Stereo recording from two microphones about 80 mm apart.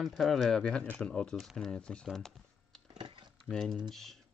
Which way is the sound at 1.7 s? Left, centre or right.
Centre.